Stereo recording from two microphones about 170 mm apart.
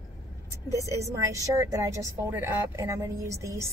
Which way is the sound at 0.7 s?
20° right (ahead or behind).